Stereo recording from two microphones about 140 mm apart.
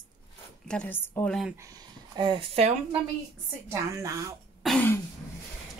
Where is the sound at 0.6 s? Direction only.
10° left (ahead or behind).